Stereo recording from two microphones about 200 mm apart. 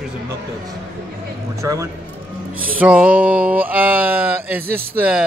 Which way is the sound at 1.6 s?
15° right (ahead or behind).